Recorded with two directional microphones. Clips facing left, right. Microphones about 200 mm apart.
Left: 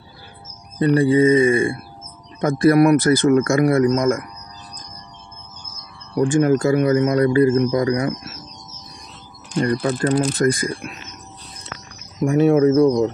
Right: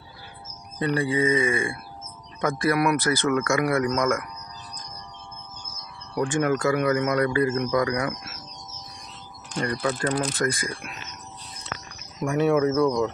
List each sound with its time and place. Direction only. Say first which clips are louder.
0.7 s a man's voice: left 9 dB; 35° left (ahead or behind)
6.3 s a man's voice: left 6 dB; 35° left (ahead or behind)
9.6 s a man's voice: left 7 dB; 30° left (ahead or behind)
12.3 s a man's voice: left 7 dB; 35° left (ahead or behind)